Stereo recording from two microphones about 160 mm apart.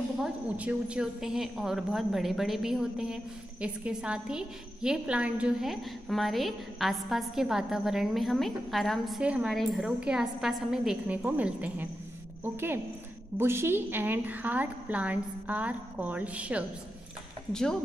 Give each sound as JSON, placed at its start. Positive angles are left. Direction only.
{"t": 0.2, "sound": "a woman's voice", "side_deg": -5}
{"t": 17.5, "sound": "a woman's voice", "side_deg": 5}